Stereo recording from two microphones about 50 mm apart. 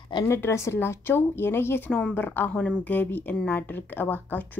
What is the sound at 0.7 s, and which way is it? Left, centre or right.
A woman's voice, left.